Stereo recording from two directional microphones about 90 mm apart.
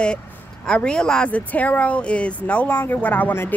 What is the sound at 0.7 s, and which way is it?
Speech, 10° left (ahead or behind).